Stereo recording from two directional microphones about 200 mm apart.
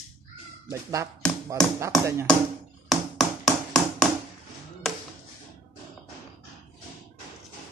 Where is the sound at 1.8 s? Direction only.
15° right (ahead or behind).